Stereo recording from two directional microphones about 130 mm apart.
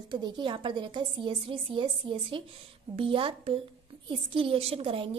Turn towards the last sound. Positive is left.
turn(degrees=-45)  # may be behind; listen again after turning